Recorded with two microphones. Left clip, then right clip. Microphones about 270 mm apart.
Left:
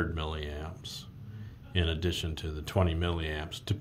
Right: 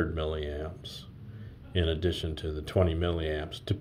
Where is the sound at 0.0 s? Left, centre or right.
Centre.